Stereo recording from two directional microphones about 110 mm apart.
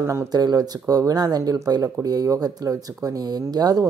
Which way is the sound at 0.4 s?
35° right (ahead or behind).